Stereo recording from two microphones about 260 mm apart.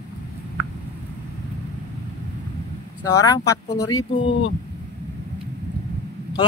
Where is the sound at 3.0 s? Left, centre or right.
Centre.